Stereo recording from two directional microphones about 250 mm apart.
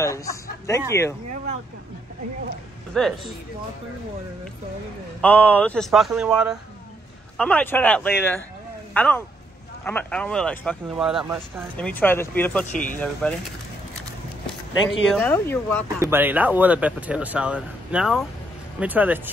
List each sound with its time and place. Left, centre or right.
0.0 s speech: centre
1.3 s vehicle: right
2.9 s speech: centre
5.2 s speech: centre
11.7 s speech: centre
15.0 s speech: centre
16.0 s speech: centre